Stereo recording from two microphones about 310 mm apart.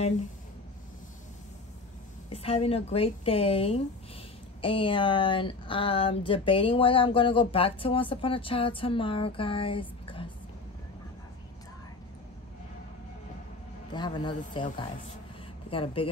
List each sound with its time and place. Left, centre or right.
2.3 s speech: centre
13.9 s speech: centre